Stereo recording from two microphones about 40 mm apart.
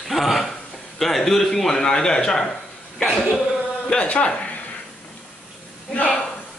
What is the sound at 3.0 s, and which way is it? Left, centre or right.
Speech, centre.